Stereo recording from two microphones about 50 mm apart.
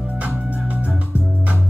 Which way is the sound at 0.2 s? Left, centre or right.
Right.